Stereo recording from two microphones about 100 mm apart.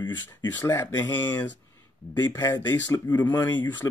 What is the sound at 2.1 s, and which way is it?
Speech, 45° left (ahead or behind).